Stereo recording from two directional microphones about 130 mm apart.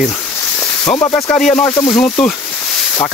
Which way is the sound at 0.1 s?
20° left (ahead or behind).